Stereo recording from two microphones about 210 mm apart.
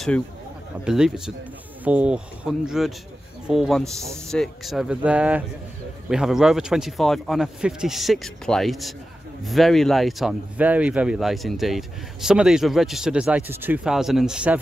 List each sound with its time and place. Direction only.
0.8 s speech: 5° right (ahead or behind)